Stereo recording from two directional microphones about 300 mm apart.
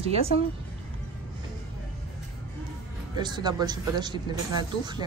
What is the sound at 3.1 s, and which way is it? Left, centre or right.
A woman's voice, centre.